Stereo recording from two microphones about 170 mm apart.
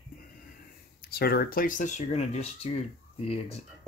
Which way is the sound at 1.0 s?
65° left (ahead or behind).